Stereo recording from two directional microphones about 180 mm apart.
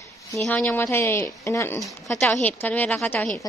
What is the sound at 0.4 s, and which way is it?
A woman's voice, 5° left (ahead or behind).